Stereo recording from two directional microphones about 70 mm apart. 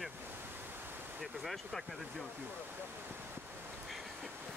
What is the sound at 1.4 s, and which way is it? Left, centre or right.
Speech, centre.